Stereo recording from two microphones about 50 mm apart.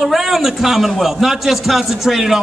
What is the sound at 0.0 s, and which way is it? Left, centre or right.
A man's voice, centre.